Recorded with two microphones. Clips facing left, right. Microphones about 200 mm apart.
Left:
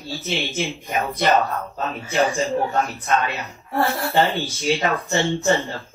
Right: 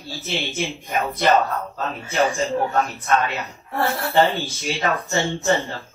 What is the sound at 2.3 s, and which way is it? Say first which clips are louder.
Speech: even; 15° left (ahead or behind).